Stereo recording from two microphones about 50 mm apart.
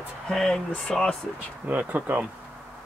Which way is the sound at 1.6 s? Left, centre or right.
Right.